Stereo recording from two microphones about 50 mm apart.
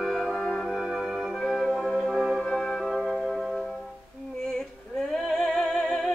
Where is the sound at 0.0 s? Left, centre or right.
Centre.